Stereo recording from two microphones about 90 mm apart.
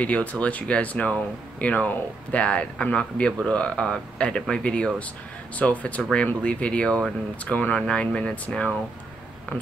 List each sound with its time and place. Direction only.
0.0 s speech: 15° left (ahead or behind)